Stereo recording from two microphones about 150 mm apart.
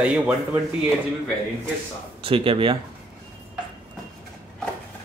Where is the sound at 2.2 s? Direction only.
35° right (ahead or behind).